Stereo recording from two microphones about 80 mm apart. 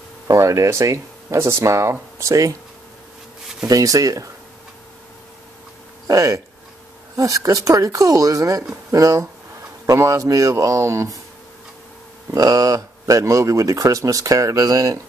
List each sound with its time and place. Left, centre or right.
0.3 s speech: right
3.6 s speech: right
6.0 s speech: right
12.4 s speech: right